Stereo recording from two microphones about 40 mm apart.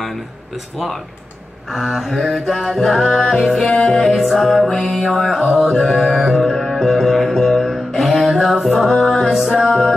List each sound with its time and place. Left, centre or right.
1.7 s music: centre
3.6 s music: centre
4.1 s music: centre
4.6 s music: centre
4.9 s music: centre
9.0 s music: centre